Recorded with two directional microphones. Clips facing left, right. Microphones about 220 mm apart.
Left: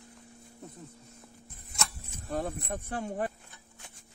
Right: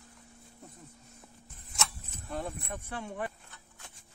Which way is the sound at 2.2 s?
40° left (ahead or behind).